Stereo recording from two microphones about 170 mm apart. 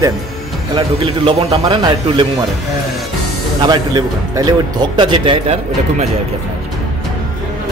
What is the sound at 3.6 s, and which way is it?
Speech, 25° right (ahead or behind).